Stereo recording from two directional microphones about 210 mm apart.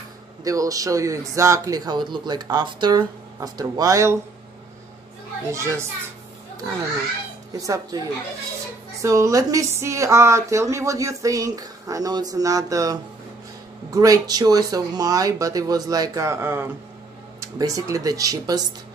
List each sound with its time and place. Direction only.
0.4 s speech: 15° right (ahead or behind)
5.5 s speech: 15° right (ahead or behind)
7.6 s speech: 15° right (ahead or behind)
9.0 s speech: 15° right (ahead or behind)